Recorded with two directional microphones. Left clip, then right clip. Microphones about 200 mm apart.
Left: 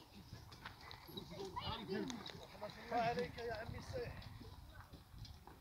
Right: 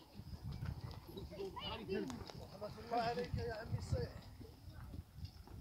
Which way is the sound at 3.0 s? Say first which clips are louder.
Left 1 dB; 50° right (ahead or behind).